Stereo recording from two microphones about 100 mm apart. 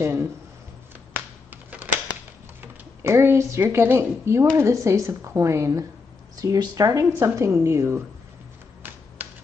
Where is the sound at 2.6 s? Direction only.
25° right (ahead or behind).